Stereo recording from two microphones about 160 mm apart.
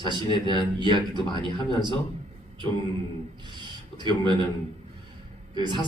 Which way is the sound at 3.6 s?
30° right (ahead or behind).